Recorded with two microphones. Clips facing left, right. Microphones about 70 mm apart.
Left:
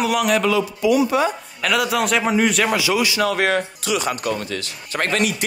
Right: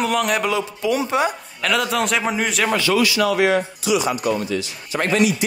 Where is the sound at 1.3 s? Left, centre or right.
Centre.